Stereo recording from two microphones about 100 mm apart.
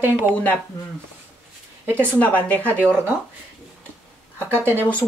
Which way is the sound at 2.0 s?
15° left (ahead or behind).